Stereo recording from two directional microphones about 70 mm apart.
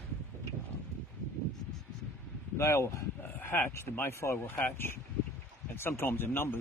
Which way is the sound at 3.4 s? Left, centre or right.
Left.